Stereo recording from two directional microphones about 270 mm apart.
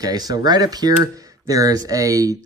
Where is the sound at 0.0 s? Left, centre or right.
Centre.